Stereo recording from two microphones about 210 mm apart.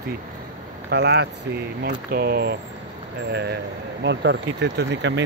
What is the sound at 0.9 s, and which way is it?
Speech, 55° right (ahead or behind).